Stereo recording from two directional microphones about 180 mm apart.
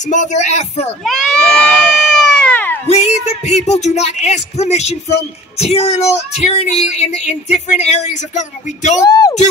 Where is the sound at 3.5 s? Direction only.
40° left (ahead or behind).